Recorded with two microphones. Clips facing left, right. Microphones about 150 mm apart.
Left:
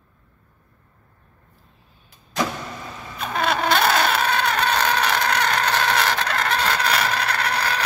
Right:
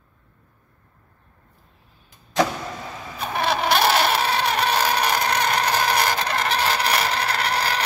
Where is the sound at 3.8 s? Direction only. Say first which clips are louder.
Even; 25° right (ahead or behind).